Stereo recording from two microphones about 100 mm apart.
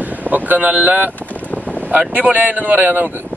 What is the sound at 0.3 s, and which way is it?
Speech, 15° right (ahead or behind).